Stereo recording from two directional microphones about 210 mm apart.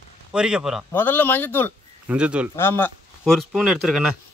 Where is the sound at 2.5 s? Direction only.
10° left (ahead or behind).